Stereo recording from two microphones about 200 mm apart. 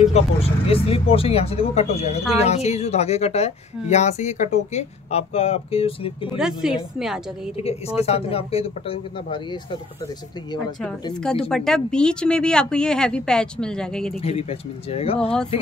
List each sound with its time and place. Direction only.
0.0 s a woman's voice: 30° left (ahead or behind)
6.3 s speech: 5° right (ahead or behind)
7.5 s speech: 30° left (ahead or behind)
11.4 s speech: centre (ahead or behind)
14.2 s speech: 30° left (ahead or behind)